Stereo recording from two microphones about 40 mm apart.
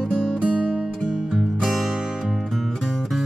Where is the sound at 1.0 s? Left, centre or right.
Centre.